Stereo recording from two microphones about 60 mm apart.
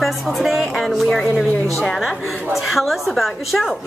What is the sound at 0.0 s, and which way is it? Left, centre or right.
A woman's voice, centre.